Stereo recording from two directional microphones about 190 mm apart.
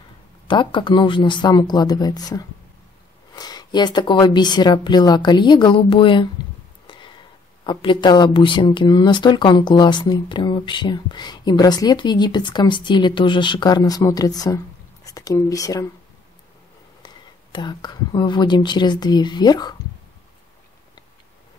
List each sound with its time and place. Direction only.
0.5 s speech: 25° left (ahead or behind)
6.9 s a sound: 25° left (ahead or behind)
7.6 s speech: 25° left (ahead or behind)
17.0 s speech: 25° left (ahead or behind)